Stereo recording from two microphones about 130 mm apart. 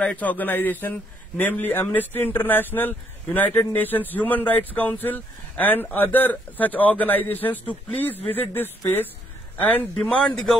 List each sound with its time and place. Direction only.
0.0 s a man's voice: 10° left (ahead or behind)